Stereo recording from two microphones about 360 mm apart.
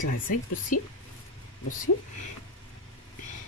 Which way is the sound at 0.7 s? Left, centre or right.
Left.